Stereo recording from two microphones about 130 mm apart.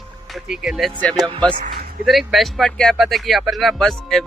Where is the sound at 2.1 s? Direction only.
Centre (ahead or behind).